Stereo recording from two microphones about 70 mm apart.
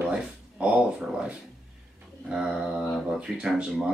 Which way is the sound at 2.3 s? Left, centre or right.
Centre.